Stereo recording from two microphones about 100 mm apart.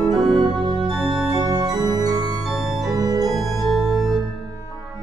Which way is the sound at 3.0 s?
40° right (ahead or behind).